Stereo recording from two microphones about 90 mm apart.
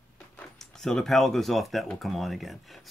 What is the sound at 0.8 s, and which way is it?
Speech, 5° left (ahead or behind).